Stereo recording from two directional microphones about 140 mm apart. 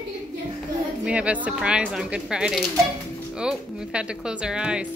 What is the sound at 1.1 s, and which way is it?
Speech, 10° right (ahead or behind).